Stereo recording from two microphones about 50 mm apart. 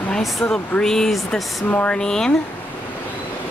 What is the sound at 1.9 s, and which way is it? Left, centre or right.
Speech, centre.